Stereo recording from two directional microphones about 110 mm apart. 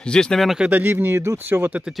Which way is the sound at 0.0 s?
5° left (ahead or behind).